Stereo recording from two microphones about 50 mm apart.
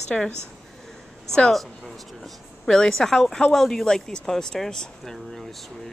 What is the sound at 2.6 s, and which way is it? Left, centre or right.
Speech, centre.